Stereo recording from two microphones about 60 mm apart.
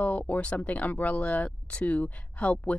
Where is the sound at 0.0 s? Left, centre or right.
Left.